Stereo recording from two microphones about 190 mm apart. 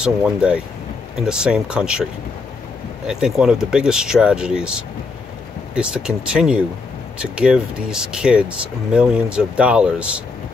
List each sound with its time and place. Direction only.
0.0 s speech: 5° right (ahead or behind)
3.1 s speech: 5° right (ahead or behind)